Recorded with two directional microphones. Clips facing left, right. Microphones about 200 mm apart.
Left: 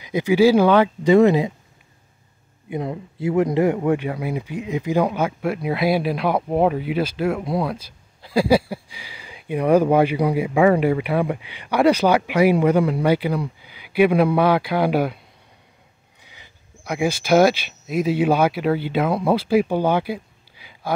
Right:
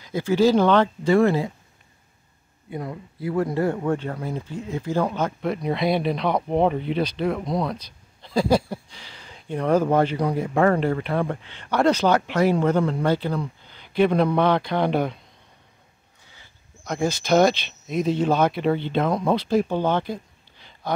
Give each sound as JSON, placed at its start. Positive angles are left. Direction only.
{"t": 0.0, "sound": "speech", "side_deg": 15}
{"t": 2.7, "sound": "speech", "side_deg": 25}
{"t": 16.3, "sound": "speech", "side_deg": 10}